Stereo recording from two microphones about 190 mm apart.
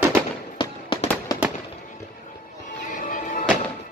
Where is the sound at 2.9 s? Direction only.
45° left (ahead or behind).